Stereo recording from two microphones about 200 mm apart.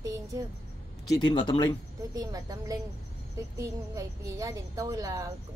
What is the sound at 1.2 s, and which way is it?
Speech, 25° left (ahead or behind).